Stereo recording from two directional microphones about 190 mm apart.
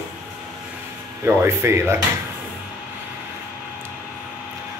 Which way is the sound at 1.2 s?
15° right (ahead or behind).